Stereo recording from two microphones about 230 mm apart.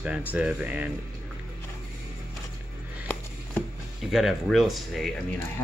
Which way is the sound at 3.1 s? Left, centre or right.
Centre.